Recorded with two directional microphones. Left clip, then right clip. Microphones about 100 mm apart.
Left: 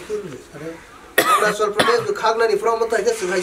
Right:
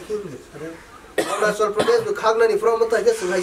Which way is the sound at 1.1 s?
40° left (ahead or behind).